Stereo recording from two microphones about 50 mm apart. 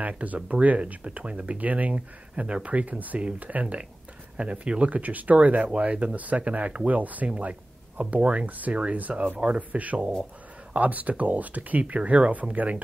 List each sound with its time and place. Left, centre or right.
0.0 s speech: right